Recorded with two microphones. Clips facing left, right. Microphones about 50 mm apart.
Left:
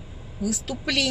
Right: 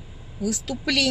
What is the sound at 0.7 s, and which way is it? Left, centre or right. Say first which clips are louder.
Speech: right 1 dB; right.